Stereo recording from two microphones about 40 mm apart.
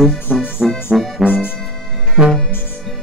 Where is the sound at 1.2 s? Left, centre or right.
Left.